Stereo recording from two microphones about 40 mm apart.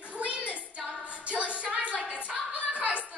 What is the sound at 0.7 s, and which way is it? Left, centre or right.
Female singing, right.